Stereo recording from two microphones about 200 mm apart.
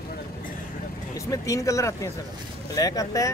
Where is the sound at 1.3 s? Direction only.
15° left (ahead or behind).